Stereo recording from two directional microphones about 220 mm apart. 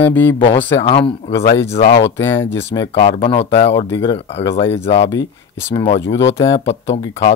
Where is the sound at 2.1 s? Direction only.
10° left (ahead or behind).